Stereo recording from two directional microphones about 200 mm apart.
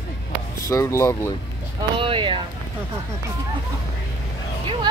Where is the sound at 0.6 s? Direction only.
15° left (ahead or behind).